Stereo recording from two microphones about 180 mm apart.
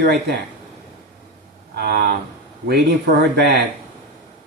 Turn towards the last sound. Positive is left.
turn(degrees=-70)  # may be behind; listen again after turning